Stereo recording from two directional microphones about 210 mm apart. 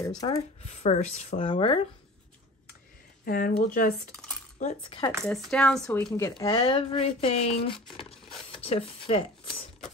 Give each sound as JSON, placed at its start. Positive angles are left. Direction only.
{"t": 0.2, "sound": "speech", "side_deg": 25}
{"t": 3.3, "sound": "speech", "side_deg": 45}
{"t": 4.8, "sound": "speech", "side_deg": 25}
{"t": 5.2, "sound": "speech", "side_deg": 5}